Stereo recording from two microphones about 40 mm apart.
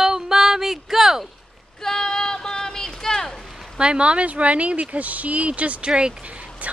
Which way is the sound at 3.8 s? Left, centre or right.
Right.